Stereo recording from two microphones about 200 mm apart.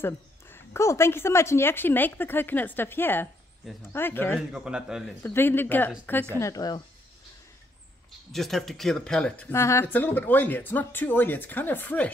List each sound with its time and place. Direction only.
0.0 s speech: 10° left (ahead or behind)
4.5 s a man's voice: 5° right (ahead or behind)
5.2 s a woman's voice: 10° left (ahead or behind)
8.3 s speech: centre (ahead or behind)